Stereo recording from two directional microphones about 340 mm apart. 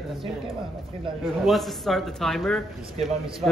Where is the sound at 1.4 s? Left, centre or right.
Centre.